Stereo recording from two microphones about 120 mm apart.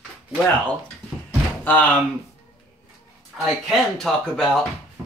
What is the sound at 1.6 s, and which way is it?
Speech, 15° left (ahead or behind).